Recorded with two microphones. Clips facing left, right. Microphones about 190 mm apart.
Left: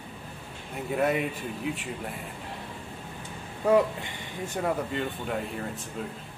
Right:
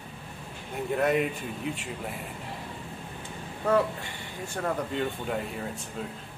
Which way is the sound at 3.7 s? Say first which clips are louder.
Left 3 dB; 20° left (ahead or behind).